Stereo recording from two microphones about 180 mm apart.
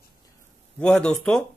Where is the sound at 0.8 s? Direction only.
5° left (ahead or behind).